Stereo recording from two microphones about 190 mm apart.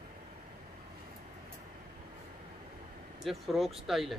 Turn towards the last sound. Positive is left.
turn(degrees=0)  # may be behind; listen again after turning